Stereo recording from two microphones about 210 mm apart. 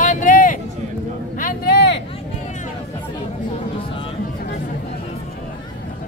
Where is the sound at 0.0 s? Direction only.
40° left (ahead or behind).